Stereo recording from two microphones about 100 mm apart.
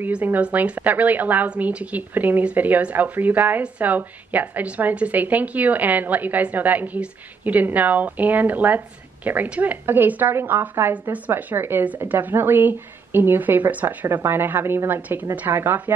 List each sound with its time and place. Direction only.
0.0 s a woman's voice: 15° right (ahead or behind)